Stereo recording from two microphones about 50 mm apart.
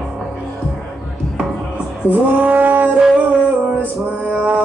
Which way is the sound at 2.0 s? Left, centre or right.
Right.